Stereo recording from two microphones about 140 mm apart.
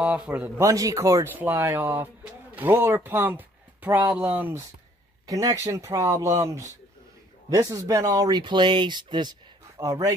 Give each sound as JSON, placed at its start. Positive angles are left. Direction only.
{"t": 0.0, "sound": "a man's voice", "side_deg": -10}
{"t": 0.6, "sound": "speech", "side_deg": -25}
{"t": 5.2, "sound": "speech", "side_deg": -25}